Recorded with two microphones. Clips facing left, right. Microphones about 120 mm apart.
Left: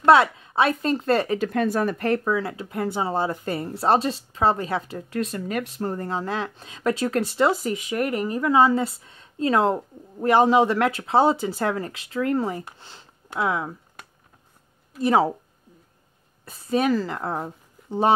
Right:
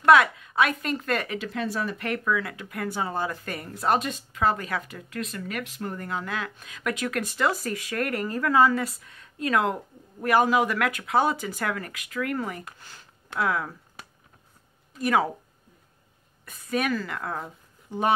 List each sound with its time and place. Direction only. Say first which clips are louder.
0.0 s speech: left 2 dB; 30° left (ahead or behind)
1.5 s speech: left 7 dB; 50° left (ahead or behind)
2.0 s speech: left 5 dB; 35° left (ahead or behind)
15.0 s speech: left 4 dB; 30° left (ahead or behind)
16.4 s speech: left 5 dB; 30° left (ahead or behind)